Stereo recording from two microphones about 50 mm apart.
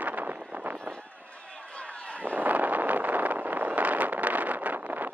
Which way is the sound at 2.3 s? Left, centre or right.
Right.